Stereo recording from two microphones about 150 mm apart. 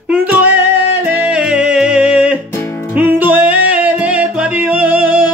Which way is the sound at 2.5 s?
15° left (ahead or behind).